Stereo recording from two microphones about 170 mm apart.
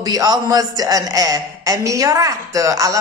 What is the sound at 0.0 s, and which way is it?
A man's voice, 20° right (ahead or behind).